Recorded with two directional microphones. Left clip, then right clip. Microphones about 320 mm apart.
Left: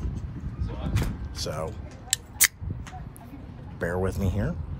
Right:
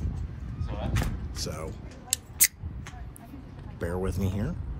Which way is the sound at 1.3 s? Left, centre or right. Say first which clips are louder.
Left 5 dB; centre.